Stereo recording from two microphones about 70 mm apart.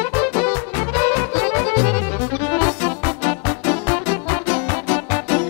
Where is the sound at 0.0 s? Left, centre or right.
Left.